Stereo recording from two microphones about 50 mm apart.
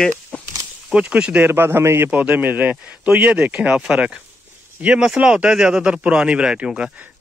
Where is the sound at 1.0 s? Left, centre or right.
Right.